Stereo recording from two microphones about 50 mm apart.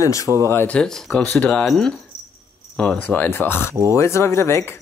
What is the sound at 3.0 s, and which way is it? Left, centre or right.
Speech, left.